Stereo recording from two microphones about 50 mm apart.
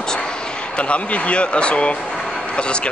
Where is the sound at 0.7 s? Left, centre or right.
Left.